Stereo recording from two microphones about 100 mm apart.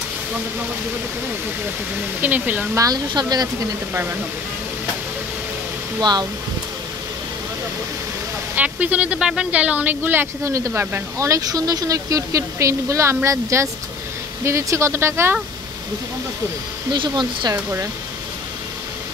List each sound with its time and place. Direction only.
2.2 s speech: 15° right (ahead or behind)
2.7 s speech: 35° right (ahead or behind)
3.9 s speech: 20° right (ahead or behind)
5.9 s speech: 45° right (ahead or behind)
8.5 s speech: 15° right (ahead or behind)
16.9 s speech: 50° right (ahead or behind)